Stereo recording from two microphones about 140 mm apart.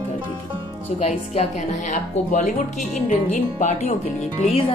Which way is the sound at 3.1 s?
60° left (ahead or behind).